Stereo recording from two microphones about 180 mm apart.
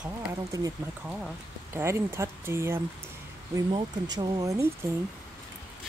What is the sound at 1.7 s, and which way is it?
Speech, 15° right (ahead or behind).